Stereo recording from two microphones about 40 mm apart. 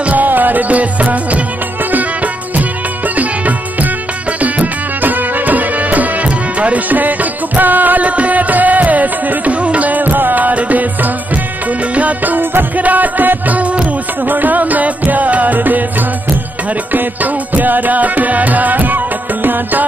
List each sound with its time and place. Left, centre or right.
0.0 s music: right
3.2 s music: right
11.9 s music: right
16.9 s music: right